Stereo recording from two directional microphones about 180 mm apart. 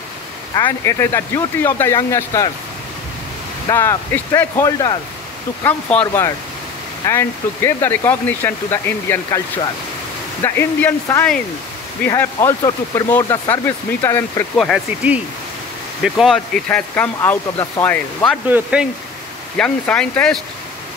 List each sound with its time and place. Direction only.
0.7 s speech: 15° left (ahead or behind)
3.7 s speech: 15° left (ahead or behind)
5.6 s speech: 10° left (ahead or behind)
10.4 s speech: 10° left (ahead or behind)
14.6 s speech: centre (ahead or behind)
16.6 s speech: 10° left (ahead or behind)
18.5 s speech: 5° right (ahead or behind)
19.5 s speech: 5° left (ahead or behind)